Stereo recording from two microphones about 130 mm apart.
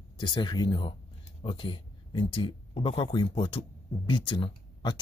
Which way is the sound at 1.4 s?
40° left (ahead or behind).